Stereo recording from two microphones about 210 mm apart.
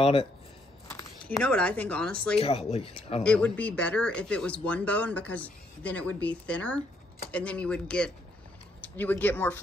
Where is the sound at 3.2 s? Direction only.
5° left (ahead or behind).